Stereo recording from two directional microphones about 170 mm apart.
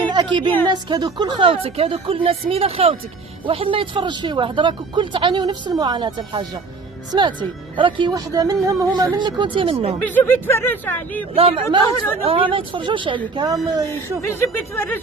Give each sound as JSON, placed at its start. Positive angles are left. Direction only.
{"t": 0.1, "sound": "a sound", "side_deg": -25}
{"t": 0.7, "sound": "a woman's voice", "side_deg": -25}
{"t": 10.0, "sound": "speech", "side_deg": 10}
{"t": 11.3, "sound": "a woman's voice", "side_deg": -30}
{"t": 13.9, "sound": "speech", "side_deg": 15}